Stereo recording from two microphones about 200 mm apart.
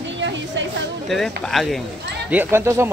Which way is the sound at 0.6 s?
65° right (ahead or behind).